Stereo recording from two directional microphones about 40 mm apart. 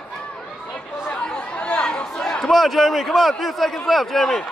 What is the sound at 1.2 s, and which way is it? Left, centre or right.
Chatter, left.